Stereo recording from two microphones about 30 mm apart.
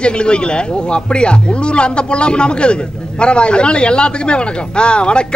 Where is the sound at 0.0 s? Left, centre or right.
Left.